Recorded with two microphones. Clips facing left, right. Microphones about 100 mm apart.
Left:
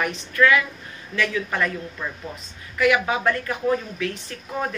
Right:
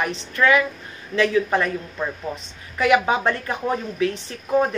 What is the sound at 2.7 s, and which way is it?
A woman's voice, 25° right (ahead or behind).